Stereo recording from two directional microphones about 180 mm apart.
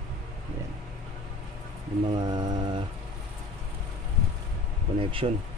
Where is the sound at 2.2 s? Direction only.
20° right (ahead or behind).